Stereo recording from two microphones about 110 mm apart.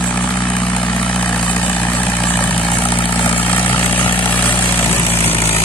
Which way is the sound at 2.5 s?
50° left (ahead or behind).